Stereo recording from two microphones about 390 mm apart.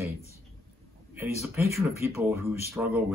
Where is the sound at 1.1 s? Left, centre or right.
Centre.